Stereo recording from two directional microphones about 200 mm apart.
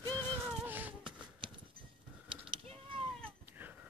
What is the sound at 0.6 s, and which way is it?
Cat, 10° right (ahead or behind).